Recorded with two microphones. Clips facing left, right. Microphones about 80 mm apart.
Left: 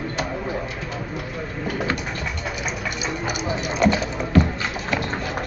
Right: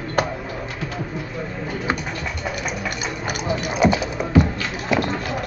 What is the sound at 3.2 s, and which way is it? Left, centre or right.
Clip-clop, centre.